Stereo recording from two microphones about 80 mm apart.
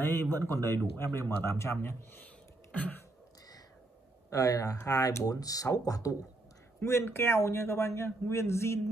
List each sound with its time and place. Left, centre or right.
0.0 s a man's voice: left
2.7 s a sound: centre
4.3 s speech: left
6.8 s a man's voice: left